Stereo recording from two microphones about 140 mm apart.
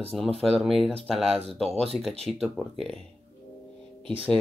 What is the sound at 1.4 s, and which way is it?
Speech, 45° right (ahead or behind).